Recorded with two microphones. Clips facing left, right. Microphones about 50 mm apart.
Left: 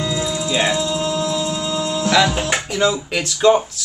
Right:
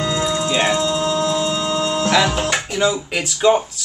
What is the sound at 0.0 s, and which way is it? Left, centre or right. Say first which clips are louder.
Music: right 2 dB; right.